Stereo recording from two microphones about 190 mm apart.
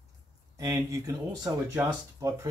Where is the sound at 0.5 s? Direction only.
20° right (ahead or behind).